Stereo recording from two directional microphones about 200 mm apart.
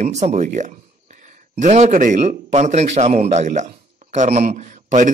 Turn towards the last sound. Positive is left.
turn(degrees=-40)  # may be behind; listen again after turning